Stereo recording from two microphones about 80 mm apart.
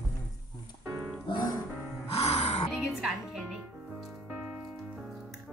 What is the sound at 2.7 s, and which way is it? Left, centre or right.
Music, centre.